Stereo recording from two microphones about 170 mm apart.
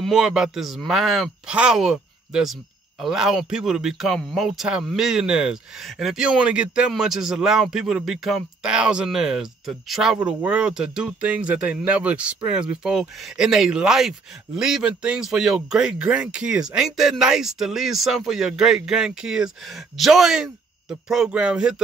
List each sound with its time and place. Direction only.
0.0 s a man's voice: 5° right (ahead or behind)